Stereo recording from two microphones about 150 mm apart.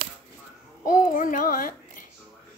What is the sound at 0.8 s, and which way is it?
A child's voice, 65° left (ahead or behind).